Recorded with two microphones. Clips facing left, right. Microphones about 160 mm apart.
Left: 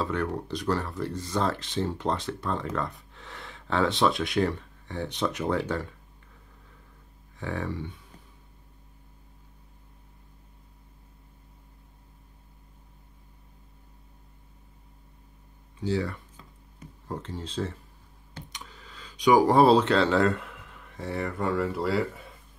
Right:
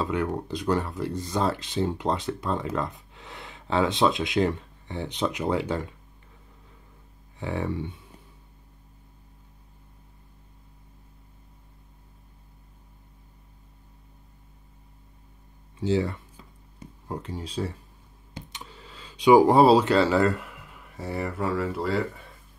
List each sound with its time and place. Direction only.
0.0 s speech: 15° right (ahead or behind)
7.3 s speech: 15° right (ahead or behind)
15.8 s speech: 25° right (ahead or behind)
16.8 s speech: 10° right (ahead or behind)
18.5 s computer keyboard: 25° right (ahead or behind)
19.7 s speech: 5° right (ahead or behind)